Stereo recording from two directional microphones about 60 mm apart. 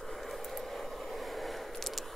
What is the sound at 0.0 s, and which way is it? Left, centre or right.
Vehicle, centre.